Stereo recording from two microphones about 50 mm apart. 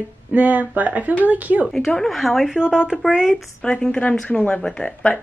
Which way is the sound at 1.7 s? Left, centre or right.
Centre.